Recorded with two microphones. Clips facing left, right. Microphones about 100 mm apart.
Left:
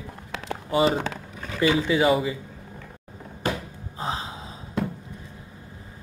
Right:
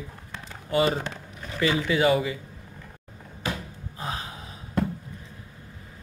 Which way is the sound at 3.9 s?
25° left (ahead or behind).